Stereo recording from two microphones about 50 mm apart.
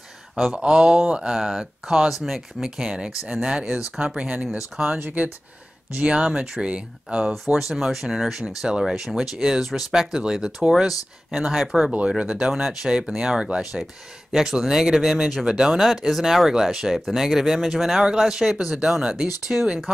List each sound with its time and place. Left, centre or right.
0.6 s speech: centre
6.0 s speech: centre
7.5 s speech: centre